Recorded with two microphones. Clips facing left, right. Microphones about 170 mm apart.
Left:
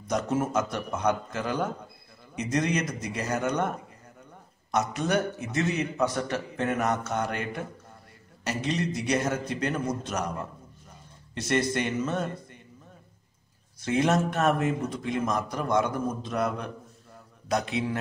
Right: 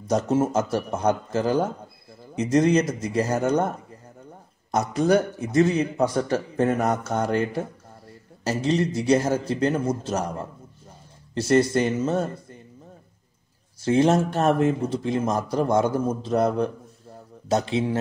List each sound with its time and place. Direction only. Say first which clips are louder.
0.1 s a man's voice: right 5 dB; 30° right (ahead or behind)
13.8 s a man's voice: right 5 dB; 30° right (ahead or behind)